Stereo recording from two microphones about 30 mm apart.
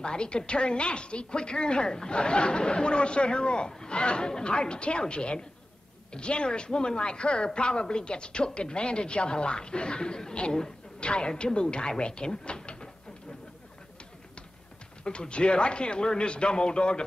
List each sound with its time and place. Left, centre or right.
0.0 s speech: left
15.0 s speech: left